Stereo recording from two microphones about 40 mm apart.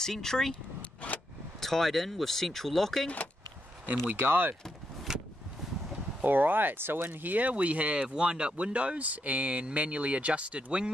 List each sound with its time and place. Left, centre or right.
0.0 s speech: centre
1.0 s vehicle: left
1.6 s speech: centre
4.0 s speech: right
5.1 s vehicle: centre
6.2 s speech: right
7.2 s speech: right
8.1 s speech: right